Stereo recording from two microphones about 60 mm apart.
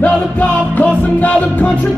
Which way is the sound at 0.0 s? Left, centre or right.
Left.